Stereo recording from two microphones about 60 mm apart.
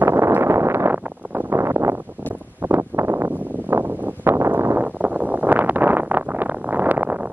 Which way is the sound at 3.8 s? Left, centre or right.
Right.